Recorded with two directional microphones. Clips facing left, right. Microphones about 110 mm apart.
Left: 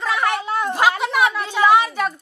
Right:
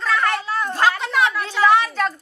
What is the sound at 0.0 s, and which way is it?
Speech, 15° left (ahead or behind).